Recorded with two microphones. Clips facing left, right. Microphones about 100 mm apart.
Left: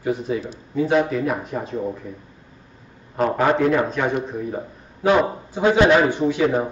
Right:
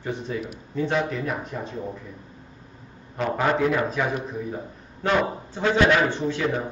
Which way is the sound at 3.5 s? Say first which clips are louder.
Left 4 dB; centre (ahead or behind).